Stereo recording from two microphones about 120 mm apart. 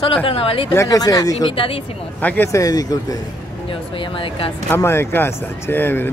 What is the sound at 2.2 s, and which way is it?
Speech, 15° left (ahead or behind).